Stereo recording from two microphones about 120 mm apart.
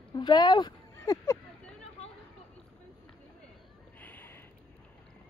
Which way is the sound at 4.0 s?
15° left (ahead or behind).